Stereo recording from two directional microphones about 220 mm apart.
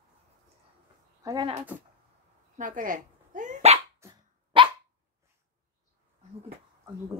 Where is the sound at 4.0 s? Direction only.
20° right (ahead or behind).